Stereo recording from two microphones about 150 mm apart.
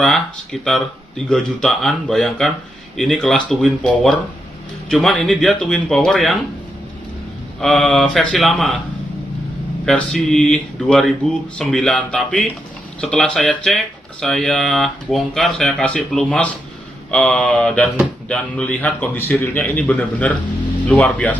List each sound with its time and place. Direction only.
0.0 s speech: 5° left (ahead or behind)
7.6 s speech: centre (ahead or behind)
9.8 s speech: 5° left (ahead or behind)